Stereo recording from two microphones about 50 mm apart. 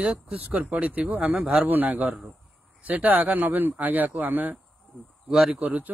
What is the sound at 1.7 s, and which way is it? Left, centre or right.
A man's voice, right.